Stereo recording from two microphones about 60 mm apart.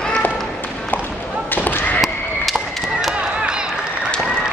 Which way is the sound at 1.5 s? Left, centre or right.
Left.